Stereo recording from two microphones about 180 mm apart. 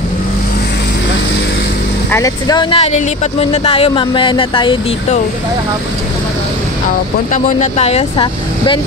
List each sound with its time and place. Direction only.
2.0 s speech: 15° left (ahead or behind)
7.3 s speech: 40° left (ahead or behind)